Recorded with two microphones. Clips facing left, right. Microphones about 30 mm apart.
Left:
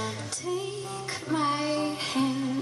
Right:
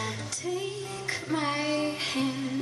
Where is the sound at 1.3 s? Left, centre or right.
Centre.